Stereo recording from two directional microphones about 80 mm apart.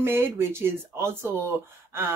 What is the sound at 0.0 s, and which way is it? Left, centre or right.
Speech, right.